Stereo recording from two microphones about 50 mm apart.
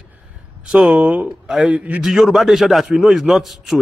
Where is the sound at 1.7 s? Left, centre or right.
Right.